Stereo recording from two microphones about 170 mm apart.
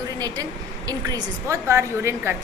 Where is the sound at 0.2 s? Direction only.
20° right (ahead or behind).